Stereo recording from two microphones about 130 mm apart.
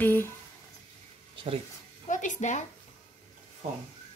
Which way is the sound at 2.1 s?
75° left (ahead or behind).